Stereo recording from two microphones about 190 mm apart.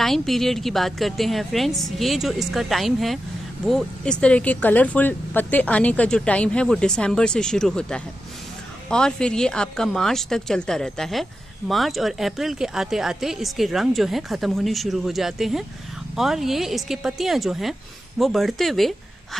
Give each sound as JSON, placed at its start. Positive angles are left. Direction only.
{"t": 0.0, "sound": "a woman's voice", "side_deg": 0}